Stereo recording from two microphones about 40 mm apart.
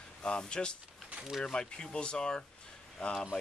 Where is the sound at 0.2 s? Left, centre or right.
Left.